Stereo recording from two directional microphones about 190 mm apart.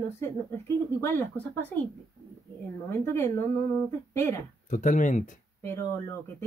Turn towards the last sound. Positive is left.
turn(degrees=15)  # may be behind; listen again after turning